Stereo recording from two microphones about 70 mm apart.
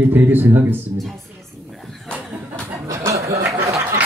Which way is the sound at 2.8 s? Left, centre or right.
Right.